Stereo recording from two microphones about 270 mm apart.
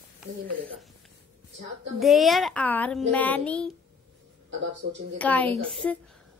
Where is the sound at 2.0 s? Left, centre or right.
Centre.